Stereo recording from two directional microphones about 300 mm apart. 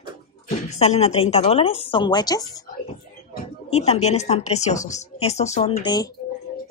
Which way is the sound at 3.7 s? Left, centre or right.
Left.